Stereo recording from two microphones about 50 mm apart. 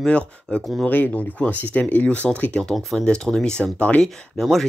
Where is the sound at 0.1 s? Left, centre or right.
Centre.